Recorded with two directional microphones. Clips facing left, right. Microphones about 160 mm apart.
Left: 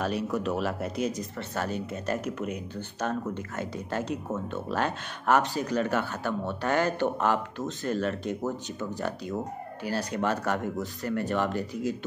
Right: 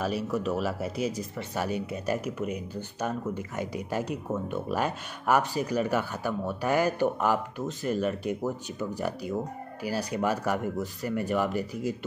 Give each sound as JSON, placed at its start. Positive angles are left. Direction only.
{"t": 0.0, "sound": "speech", "side_deg": -5}